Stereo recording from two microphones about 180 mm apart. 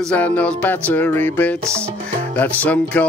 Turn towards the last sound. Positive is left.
turn(degrees=10)  # may be behind; listen again after turning